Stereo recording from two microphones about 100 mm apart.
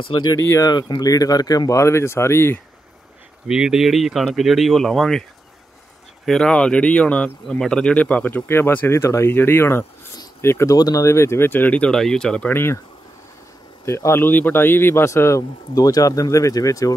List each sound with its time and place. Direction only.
0.0 s speech: 50° left (ahead or behind)
0.4 s speech: 30° left (ahead or behind)
0.7 s speech: 45° left (ahead or behind); by 2.6 s 25° left (ahead or behind)
3.4 s speech: 5° right (ahead or behind)
6.2 s speech: 5° left (ahead or behind)
12.4 s speech: 25° left (ahead or behind)
13.8 s speech: 30° left (ahead or behind)